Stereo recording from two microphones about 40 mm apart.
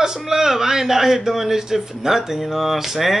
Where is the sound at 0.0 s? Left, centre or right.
Centre.